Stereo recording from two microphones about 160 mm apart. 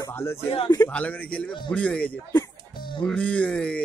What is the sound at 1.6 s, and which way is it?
A man's voice, 10° left (ahead or behind).